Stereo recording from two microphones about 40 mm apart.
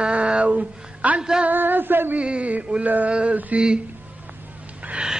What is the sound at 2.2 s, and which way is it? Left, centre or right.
Speech, right.